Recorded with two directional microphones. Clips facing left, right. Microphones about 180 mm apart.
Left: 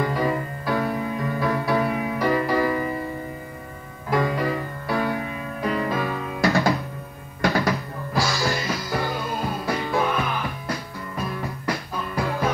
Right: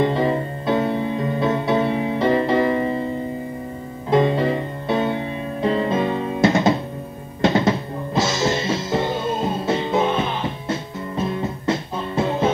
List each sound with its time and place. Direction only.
0.0 s music: 25° right (ahead or behind)
4.1 s music: 25° right (ahead or behind)